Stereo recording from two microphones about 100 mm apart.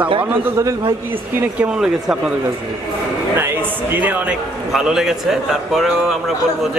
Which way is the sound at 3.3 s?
25° right (ahead or behind).